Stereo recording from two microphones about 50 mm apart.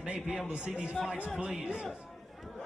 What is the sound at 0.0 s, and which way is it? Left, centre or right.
Speech, right.